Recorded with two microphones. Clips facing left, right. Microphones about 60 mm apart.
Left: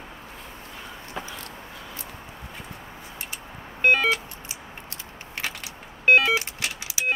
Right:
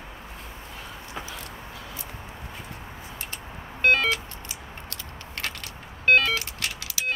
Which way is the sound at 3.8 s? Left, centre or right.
Centre.